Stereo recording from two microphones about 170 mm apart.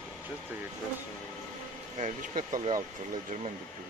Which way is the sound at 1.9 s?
45° right (ahead or behind).